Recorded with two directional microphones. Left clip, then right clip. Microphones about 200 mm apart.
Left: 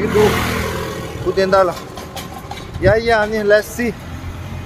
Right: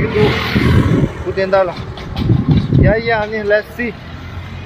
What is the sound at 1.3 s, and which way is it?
Speech, 20° left (ahead or behind).